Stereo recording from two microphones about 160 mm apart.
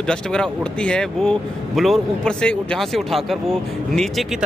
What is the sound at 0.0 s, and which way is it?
Speech, 5° left (ahead or behind).